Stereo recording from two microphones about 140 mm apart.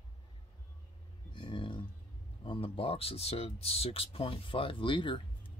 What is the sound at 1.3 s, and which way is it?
Speech, 35° left (ahead or behind).